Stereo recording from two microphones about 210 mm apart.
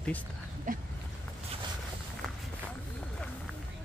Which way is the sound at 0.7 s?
40° right (ahead or behind).